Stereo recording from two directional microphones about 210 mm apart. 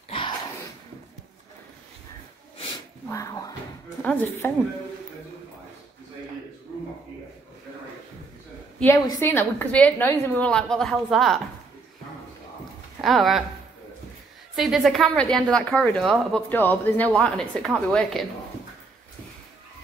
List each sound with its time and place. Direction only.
3.1 s a sound: 15° left (ahead or behind)
4.0 s a woman's voice: 10° left (ahead or behind)
8.7 s a woman's voice: 10° left (ahead or behind)
13.0 s a man's voice: centre (ahead or behind)
14.5 s a man's voice: centre (ahead or behind)